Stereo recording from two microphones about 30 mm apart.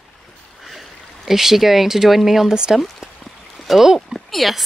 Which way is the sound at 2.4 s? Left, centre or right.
Right.